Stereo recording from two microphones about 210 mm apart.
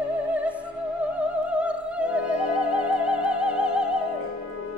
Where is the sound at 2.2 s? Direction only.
90° left.